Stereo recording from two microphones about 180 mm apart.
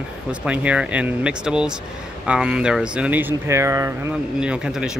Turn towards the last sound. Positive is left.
turn(degrees=-5)  # may be behind; listen again after turning